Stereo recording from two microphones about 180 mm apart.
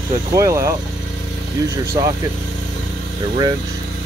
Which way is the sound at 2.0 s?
20° right (ahead or behind).